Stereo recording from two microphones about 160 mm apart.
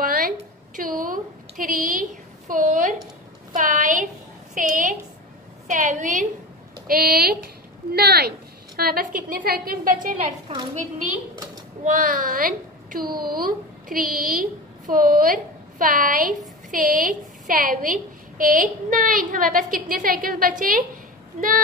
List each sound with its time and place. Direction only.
0.0 s a sound: 65° right (ahead or behind)
0.7 s a woman's voice: 60° right (ahead or behind)
6.9 s a woman's voice: 70° right (ahead or behind)
11.8 s a woman's voice: 55° right (ahead or behind)